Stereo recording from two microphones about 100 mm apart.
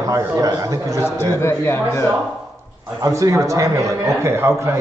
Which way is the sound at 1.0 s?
25° left (ahead or behind).